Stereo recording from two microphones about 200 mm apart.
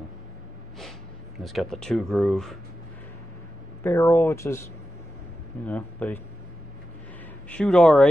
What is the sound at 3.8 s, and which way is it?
Speech, 10° left (ahead or behind).